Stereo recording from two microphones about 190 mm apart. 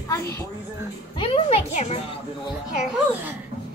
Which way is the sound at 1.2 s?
30° left (ahead or behind).